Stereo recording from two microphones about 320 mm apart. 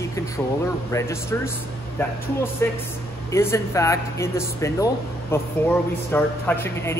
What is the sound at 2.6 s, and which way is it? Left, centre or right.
Speech, centre.